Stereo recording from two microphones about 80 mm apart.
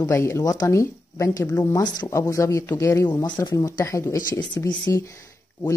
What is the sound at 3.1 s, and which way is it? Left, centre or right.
Speech, left.